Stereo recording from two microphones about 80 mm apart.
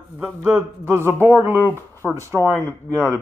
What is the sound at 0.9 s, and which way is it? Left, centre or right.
Speech, right.